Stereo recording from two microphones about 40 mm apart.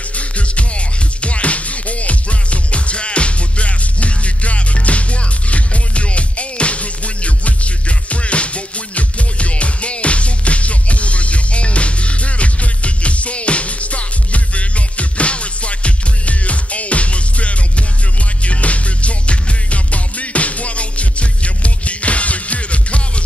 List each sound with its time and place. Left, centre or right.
0.1 s music: left